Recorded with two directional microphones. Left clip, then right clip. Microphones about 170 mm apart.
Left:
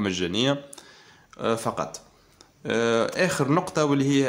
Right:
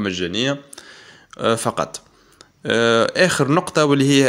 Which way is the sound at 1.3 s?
25° right (ahead or behind).